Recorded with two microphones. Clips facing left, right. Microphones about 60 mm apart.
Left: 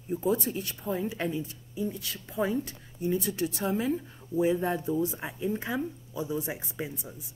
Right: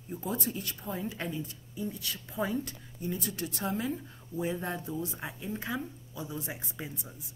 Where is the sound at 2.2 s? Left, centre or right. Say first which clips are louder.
Left 4 dB; centre.